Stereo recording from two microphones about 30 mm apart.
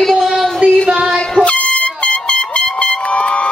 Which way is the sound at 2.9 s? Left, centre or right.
Left.